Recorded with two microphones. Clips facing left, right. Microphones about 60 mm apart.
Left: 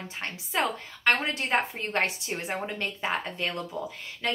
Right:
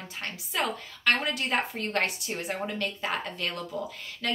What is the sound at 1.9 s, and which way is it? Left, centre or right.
Speech, left.